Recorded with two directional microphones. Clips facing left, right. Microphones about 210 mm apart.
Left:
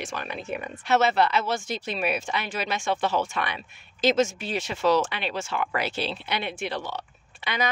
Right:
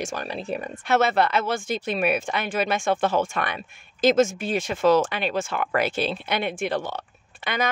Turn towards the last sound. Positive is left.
turn(degrees=-50)  # may be behind; listen again after turning